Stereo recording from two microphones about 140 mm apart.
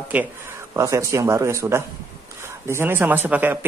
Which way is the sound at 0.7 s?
20° right (ahead or behind).